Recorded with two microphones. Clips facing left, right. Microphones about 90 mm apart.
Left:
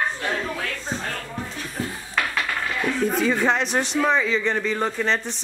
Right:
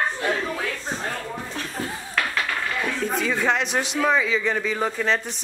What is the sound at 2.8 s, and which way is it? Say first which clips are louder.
Speech: left 5 dB; centre (ahead or behind).